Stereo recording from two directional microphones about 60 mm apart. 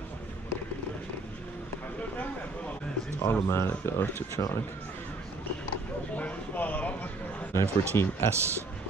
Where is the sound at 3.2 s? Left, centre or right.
Left.